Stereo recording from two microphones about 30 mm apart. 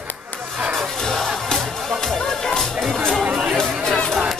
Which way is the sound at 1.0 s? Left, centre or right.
Centre.